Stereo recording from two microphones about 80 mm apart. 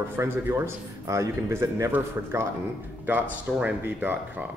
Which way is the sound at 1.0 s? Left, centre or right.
Right.